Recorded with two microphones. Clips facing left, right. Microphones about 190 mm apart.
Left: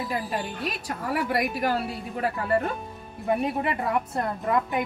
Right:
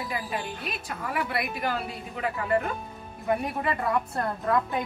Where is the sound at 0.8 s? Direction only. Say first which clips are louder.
Left 3 dB; 40° left (ahead or behind).